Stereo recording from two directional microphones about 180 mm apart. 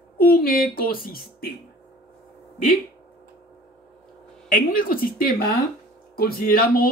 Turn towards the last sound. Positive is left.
turn(degrees=55)  # may be behind; listen again after turning